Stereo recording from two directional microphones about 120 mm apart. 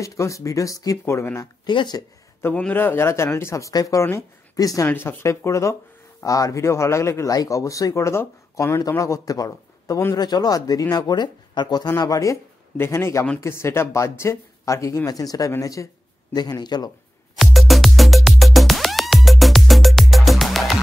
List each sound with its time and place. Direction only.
0.0 s speech: 25° left (ahead or behind)
1.7 s a man's voice: 40° left (ahead or behind)
2.4 s speech: 15° left (ahead or behind)
4.8 s a man's voice: 20° left (ahead or behind); by 16.9 s 35° left (ahead or behind)
17.4 s music: centre (ahead or behind)